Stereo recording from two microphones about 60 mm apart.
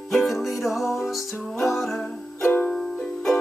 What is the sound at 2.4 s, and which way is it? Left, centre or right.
Music, left.